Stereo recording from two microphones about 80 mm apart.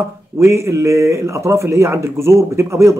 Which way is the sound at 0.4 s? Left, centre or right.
Right.